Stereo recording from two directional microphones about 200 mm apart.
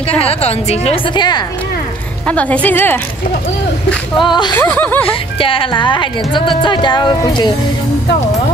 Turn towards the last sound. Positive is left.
turn(degrees=20)  # may be behind; listen again after turning